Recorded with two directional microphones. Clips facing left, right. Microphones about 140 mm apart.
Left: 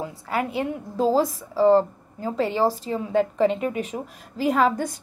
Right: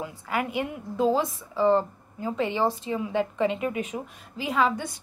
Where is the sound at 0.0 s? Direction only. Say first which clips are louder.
Left 3 dB; 35° left (ahead or behind).